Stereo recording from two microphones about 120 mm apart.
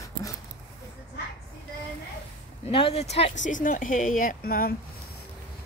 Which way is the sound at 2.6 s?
55° left (ahead or behind).